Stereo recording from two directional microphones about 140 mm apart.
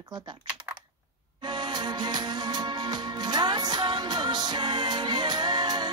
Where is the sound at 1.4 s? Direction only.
30° right (ahead or behind).